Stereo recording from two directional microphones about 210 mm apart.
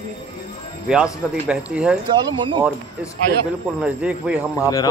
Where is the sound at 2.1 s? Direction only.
25° right (ahead or behind).